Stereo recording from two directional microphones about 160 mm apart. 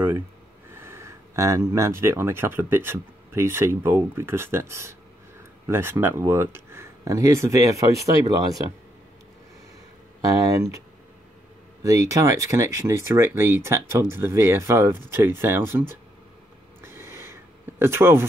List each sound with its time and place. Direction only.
0.7 s speech: 15° right (ahead or behind)
10.4 s speech: 20° right (ahead or behind)
11.8 s speech: 20° right (ahead or behind)
16.8 s a sound: 15° right (ahead or behind)